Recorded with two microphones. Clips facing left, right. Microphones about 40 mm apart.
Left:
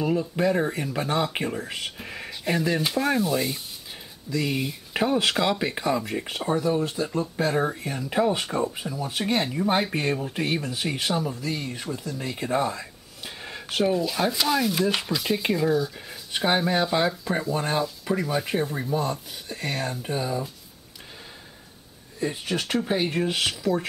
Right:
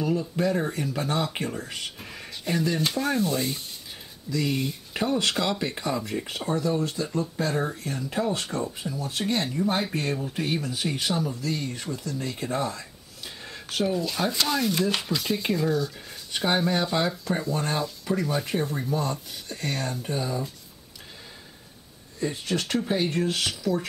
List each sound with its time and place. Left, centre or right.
0.0 s speech: centre
13.9 s speech: centre
22.2 s speech: centre